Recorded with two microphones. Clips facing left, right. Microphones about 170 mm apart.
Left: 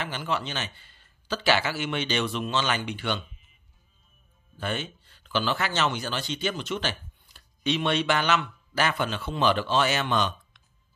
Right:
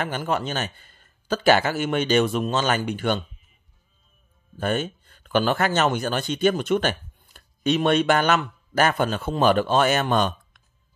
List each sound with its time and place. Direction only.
0.0 s a man's voice: 50° right (ahead or behind)
4.6 s speech: 45° right (ahead or behind)